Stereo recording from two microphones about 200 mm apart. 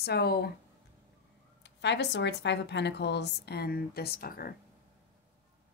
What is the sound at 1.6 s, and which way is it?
Speech, 60° left (ahead or behind).